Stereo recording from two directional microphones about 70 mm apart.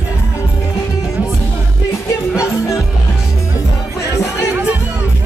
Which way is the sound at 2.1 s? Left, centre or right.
Left.